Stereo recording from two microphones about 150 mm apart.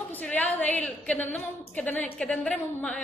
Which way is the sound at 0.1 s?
10° left (ahead or behind).